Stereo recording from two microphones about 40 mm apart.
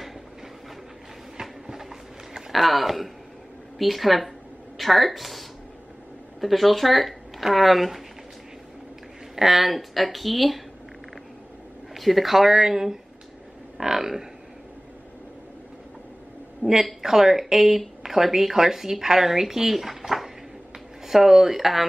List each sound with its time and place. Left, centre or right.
1.4 s a sound: centre
2.5 s speech: centre
6.4 s speech: centre
9.3 s speech: centre
11.9 s speech: centre
16.6 s a woman's voice: right
17.0 s speech: centre